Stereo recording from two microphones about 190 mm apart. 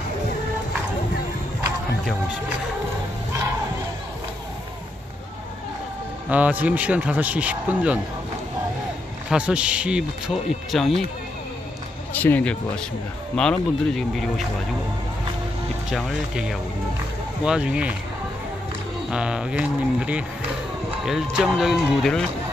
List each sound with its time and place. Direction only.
6.3 s speech: 10° right (ahead or behind)
9.3 s speech: 5° right (ahead or behind)
12.2 s speech: 10° left (ahead or behind)
15.9 s speech: centre (ahead or behind)
19.0 s speech: 5° right (ahead or behind)